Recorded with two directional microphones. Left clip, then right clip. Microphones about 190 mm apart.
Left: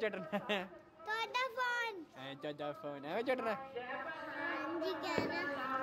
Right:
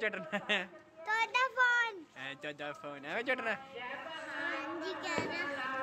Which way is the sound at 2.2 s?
20° left (ahead or behind).